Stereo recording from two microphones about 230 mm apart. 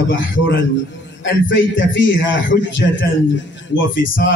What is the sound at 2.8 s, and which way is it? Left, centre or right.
Speech, left.